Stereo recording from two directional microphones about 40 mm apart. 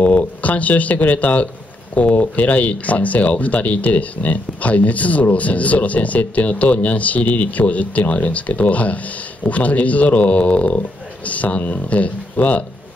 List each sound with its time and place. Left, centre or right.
0.0 s speech: left